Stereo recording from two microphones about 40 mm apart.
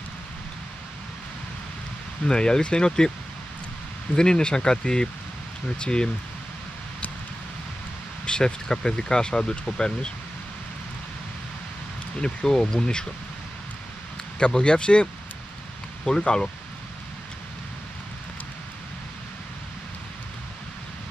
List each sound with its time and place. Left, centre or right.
2.2 s speech: centre
4.1 s speech: centre
8.3 s speech: centre
12.2 s speech: centre
14.4 s speech: left
16.2 s speech: left